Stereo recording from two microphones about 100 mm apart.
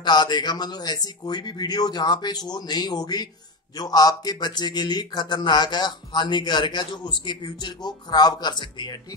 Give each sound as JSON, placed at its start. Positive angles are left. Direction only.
{"t": 0.0, "sound": "speech", "side_deg": 50}